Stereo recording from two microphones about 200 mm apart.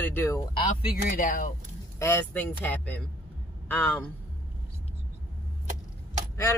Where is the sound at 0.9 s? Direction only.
45° left (ahead or behind).